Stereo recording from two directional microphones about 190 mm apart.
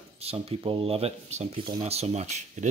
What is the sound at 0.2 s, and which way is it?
Speech, 30° right (ahead or behind).